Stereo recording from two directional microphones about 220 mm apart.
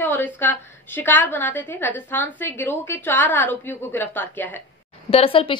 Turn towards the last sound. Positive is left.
turn(degrees=25)  # may be behind; listen again after turning